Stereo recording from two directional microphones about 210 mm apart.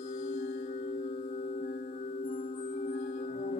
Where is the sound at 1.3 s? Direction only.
35° left (ahead or behind).